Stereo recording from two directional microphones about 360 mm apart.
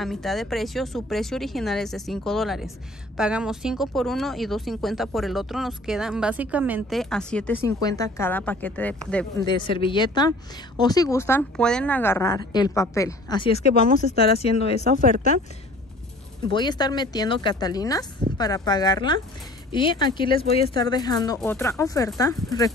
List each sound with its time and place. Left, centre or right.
0.0 s a woman's voice: centre
14.8 s speech: right
16.4 s a woman's voice: centre